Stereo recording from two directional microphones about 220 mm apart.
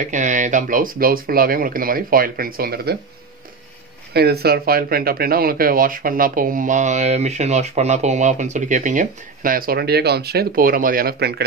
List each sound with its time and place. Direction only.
0.0 s speech: 35° right (ahead or behind)
4.1 s speech: 45° right (ahead or behind)